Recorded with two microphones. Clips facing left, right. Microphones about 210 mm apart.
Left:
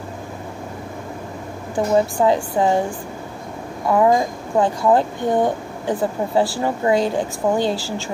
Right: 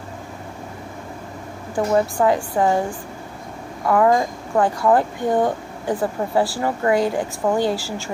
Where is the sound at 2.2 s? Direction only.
20° left (ahead or behind).